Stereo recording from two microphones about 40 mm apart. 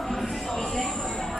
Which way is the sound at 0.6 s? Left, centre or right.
Centre.